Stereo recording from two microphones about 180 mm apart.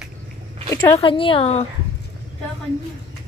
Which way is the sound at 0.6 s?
20° left (ahead or behind).